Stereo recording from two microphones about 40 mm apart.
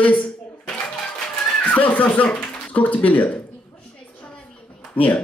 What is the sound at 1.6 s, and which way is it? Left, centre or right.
Speech, left.